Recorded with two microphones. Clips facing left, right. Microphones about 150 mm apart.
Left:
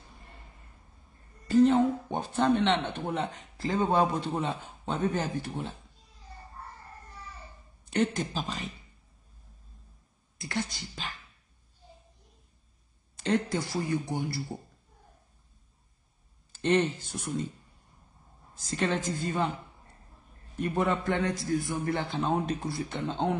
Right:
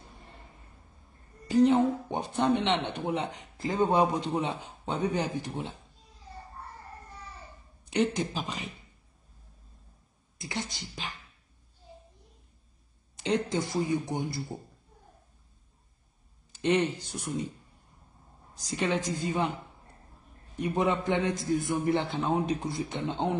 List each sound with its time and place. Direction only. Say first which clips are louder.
1.5 s speech: left 1 dB; 15° right (ahead or behind)
7.8 s speech: right 1 dB; 20° right (ahead or behind)
10.3 s a man's voice: left 3 dB; 20° right (ahead or behind)
13.1 s a man's voice: even; 20° right (ahead or behind)
16.5 s speech: even; 15° right (ahead or behind)
18.5 s speech: even; 15° right (ahead or behind)
20.5 s a man's voice: right 1 dB; 20° right (ahead or behind)